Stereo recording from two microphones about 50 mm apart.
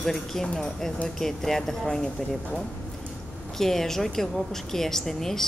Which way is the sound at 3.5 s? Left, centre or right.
Centre.